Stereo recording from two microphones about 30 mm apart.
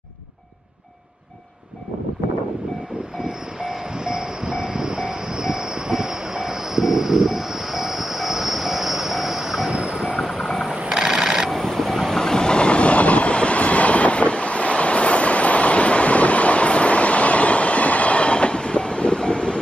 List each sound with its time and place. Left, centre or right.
3.2 s vehicle: right
9.7 s train: right
10.2 s vehicle: centre
10.9 s a sound: right
11.5 s a sound: centre
12.1 s train: centre
12.4 s train: left